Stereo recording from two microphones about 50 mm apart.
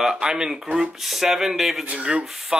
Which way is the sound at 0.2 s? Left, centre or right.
Centre.